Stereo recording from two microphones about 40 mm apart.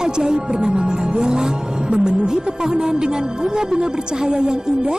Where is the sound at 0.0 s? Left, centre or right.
Centre.